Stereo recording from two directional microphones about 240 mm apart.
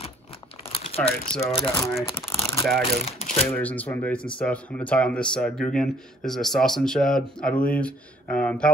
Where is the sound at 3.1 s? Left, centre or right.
Left.